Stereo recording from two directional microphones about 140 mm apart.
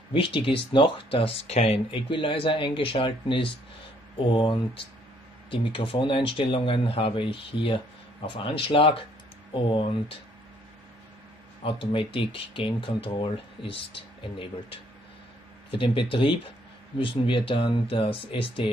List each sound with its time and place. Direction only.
0.1 s speech: 40° left (ahead or behind)
11.6 s speech: 35° left (ahead or behind)